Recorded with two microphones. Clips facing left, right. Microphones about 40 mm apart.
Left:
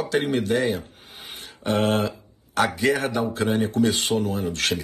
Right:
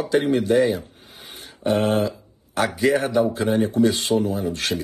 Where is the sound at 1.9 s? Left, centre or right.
Left.